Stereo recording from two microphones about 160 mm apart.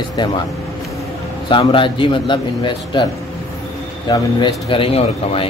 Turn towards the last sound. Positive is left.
turn(degrees=35)  # may be behind; listen again after turning